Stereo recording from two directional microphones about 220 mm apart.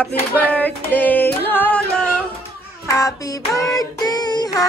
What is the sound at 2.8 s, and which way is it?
Child singing, 15° left (ahead or behind).